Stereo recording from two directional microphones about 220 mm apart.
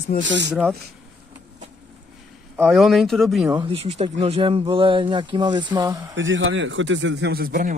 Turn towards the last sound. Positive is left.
turn(degrees=-40)  # may be behind; listen again after turning